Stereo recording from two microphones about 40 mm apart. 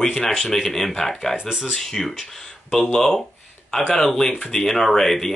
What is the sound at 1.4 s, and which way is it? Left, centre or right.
Speech, right.